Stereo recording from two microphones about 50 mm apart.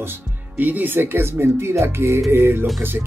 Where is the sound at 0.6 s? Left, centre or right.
Right.